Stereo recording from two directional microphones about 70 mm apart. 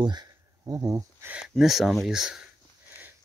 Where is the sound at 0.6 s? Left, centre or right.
Right.